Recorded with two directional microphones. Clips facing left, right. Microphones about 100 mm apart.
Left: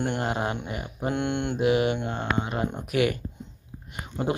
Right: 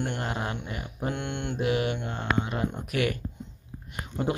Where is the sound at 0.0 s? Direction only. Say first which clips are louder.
Left 4 dB; 15° left (ahead or behind).